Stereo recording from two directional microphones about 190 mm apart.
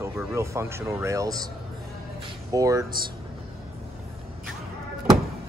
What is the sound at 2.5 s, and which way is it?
Speech, 15° right (ahead or behind).